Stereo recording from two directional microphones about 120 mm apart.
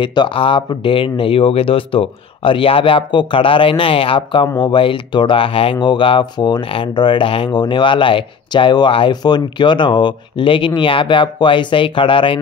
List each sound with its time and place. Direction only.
0.0 s speech: 40° left (ahead or behind)